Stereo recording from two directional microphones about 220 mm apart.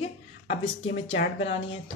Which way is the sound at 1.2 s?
30° left (ahead or behind).